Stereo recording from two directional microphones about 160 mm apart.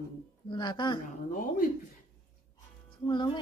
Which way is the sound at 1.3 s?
60° left (ahead or behind).